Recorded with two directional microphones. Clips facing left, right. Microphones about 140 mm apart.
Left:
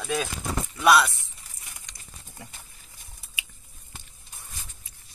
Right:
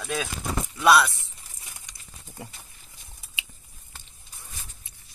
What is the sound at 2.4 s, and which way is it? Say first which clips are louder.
Speech: right 5 dB; 25° right (ahead or behind).